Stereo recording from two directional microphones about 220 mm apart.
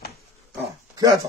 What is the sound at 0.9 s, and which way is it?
Speech, 15° right (ahead or behind).